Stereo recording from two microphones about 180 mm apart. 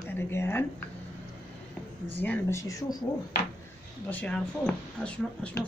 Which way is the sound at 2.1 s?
10° left (ahead or behind).